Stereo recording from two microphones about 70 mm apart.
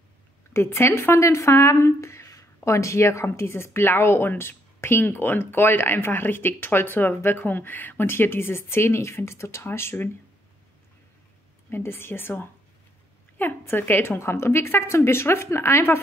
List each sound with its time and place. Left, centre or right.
0.5 s speech: left
11.7 s speech: left